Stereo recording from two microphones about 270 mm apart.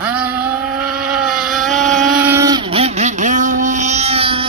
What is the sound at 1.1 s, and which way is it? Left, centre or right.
Motorboat, centre.